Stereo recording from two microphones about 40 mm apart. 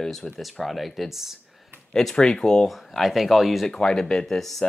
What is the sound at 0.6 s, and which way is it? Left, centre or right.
Speech, centre.